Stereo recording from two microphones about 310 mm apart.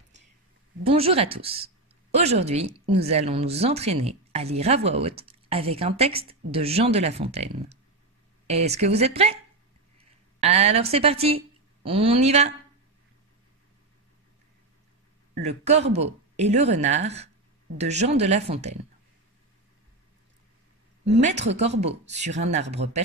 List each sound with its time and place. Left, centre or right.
0.8 s a woman's voice: centre
15.4 s speech: right
21.0 s speech: right